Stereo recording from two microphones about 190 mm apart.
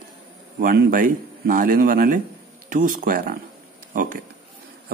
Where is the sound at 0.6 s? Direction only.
50° right (ahead or behind).